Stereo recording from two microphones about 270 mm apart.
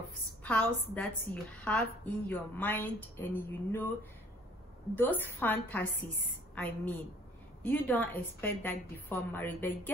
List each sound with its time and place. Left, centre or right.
0.4 s a woman's voice: centre
4.9 s a woman's voice: centre